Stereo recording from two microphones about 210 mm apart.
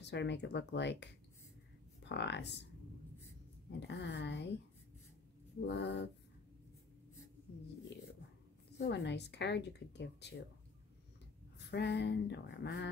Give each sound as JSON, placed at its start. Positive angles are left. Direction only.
{"t": 0.0, "sound": "speech", "side_deg": 55}
{"t": 3.8, "sound": "speech", "side_deg": 55}
{"t": 5.7, "sound": "speech", "side_deg": 55}
{"t": 8.7, "sound": "speech", "side_deg": 55}
{"t": 11.5, "sound": "speech", "side_deg": 55}